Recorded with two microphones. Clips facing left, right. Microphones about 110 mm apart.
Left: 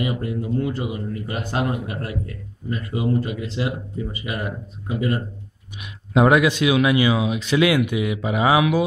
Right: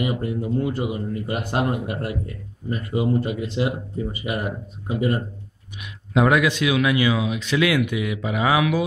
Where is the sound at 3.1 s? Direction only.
20° right (ahead or behind).